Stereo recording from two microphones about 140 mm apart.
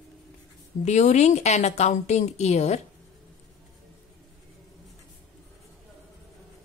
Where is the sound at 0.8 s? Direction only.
55° left (ahead or behind).